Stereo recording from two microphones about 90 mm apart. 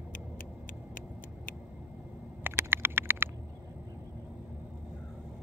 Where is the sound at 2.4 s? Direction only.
25° right (ahead or behind).